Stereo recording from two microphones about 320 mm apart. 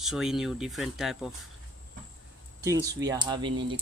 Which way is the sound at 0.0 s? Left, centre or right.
Centre.